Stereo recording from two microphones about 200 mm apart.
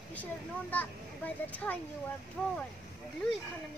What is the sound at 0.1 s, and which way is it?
Speech, 10° left (ahead or behind).